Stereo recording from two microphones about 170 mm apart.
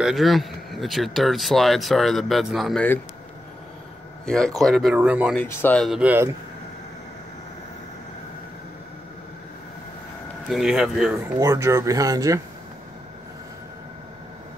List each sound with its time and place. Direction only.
0.0 s speech: centre (ahead or behind)
4.3 s speech: 5° left (ahead or behind)
5.3 s speech: 10° left (ahead or behind)
5.8 s speech: 5° right (ahead or behind)
10.5 s speech: 5° right (ahead or behind)
11.3 s speech: 20° right (ahead or behind)